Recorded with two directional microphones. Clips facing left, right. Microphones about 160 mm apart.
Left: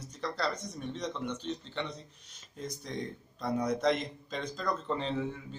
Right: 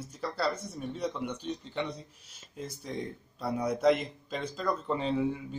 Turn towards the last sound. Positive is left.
turn(degrees=-10)  # may be behind; listen again after turning